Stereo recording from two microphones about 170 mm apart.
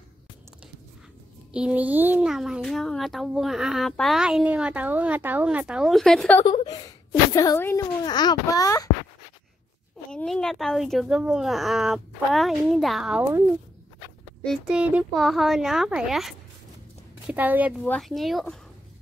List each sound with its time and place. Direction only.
1.5 s a child's voice: 5° right (ahead or behind)
6.4 s a woman's voice: 25° left (ahead or behind)
10.1 s a child's voice: 5° left (ahead or behind)
14.4 s a child's voice: centre (ahead or behind)
17.8 s a child's voice: 5° left (ahead or behind)